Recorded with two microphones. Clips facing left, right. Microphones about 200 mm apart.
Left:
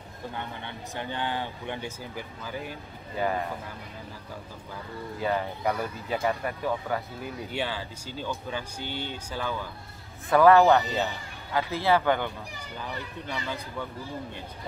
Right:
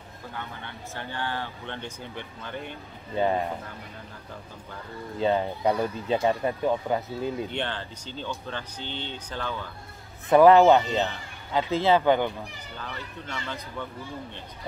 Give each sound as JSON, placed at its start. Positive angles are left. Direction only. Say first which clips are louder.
{"t": 0.7, "sound": "speech", "louder": "left 2 dB", "side_deg": 15}
{"t": 3.2, "sound": "speech", "louder": "right 4 dB", "side_deg": -25}
{"t": 5.2, "sound": "speech", "louder": "right 4 dB", "side_deg": -25}
{"t": 7.5, "sound": "speech", "louder": "even", "side_deg": 5}
{"t": 10.3, "sound": "speech", "louder": "right 3 dB", "side_deg": -20}
{"t": 10.9, "sound": "speech", "louder": "right 2 dB", "side_deg": 10}
{"t": 11.5, "sound": "speech", "louder": "right 3 dB", "side_deg": -20}
{"t": 12.7, "sound": "speech", "louder": "left 2 dB", "side_deg": 10}